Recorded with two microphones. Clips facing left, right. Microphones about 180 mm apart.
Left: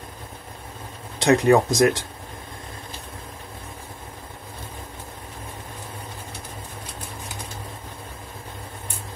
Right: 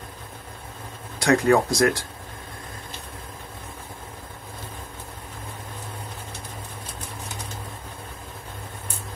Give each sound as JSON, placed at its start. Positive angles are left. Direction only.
{"t": 1.2, "sound": "speech", "side_deg": 20}